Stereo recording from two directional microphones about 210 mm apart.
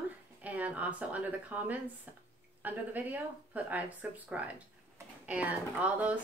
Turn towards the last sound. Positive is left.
turn(degrees=-5)  # may be behind; listen again after turning